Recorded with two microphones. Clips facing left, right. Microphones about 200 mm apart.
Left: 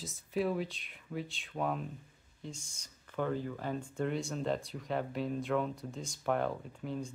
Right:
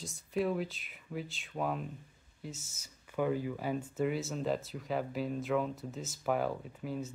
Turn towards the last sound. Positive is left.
turn(degrees=-5)  # may be behind; listen again after turning